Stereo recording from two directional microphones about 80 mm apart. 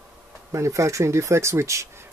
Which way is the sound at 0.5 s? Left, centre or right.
Right.